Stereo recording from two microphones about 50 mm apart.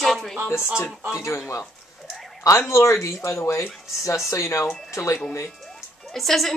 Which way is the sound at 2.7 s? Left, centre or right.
Left.